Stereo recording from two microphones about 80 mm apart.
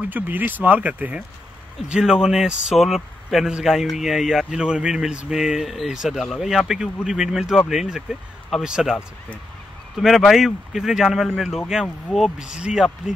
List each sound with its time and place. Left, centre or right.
0.0 s speech: right
1.9 s speech: centre
9.9 s speech: centre